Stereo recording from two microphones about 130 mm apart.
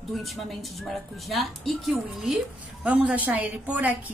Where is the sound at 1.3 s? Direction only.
Centre (ahead or behind).